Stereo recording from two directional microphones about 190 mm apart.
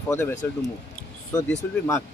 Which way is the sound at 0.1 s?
15° left (ahead or behind).